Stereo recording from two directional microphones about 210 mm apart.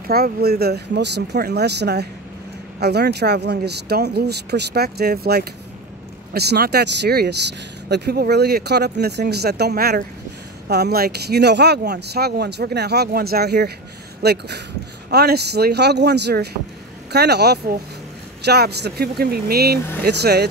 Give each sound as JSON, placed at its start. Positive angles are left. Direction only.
{"t": 0.1, "sound": "speech", "side_deg": -50}